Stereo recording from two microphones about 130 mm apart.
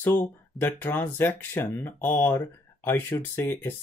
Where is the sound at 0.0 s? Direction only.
15° left (ahead or behind).